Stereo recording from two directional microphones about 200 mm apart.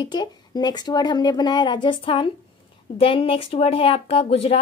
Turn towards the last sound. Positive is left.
turn(degrees=30)  # may be behind; listen again after turning